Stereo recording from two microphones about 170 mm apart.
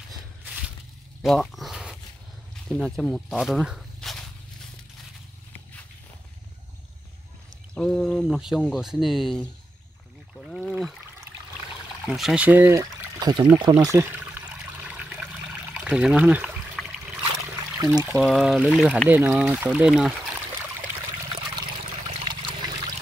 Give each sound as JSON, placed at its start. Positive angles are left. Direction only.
{"t": 1.2, "sound": "a sound", "side_deg": 0}
{"t": 2.7, "sound": "speech", "side_deg": 0}
{"t": 7.7, "sound": "speech", "side_deg": 5}
{"t": 10.3, "sound": "a sound", "side_deg": 0}
{"t": 12.1, "sound": "speech", "side_deg": -5}
{"t": 12.7, "sound": "pour", "side_deg": -20}
{"t": 13.6, "sound": "water", "side_deg": -25}
{"t": 16.8, "sound": "a sound", "side_deg": 5}
{"t": 17.7, "sound": "speech", "side_deg": -20}
{"t": 18.1, "sound": "speech", "side_deg": 0}
{"t": 22.2, "sound": "trickle", "side_deg": -25}